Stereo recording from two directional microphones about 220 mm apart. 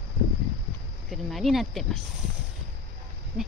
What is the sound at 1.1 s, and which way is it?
Speech, centre (ahead or behind).